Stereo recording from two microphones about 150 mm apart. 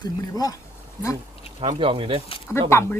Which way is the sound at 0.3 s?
25° left (ahead or behind).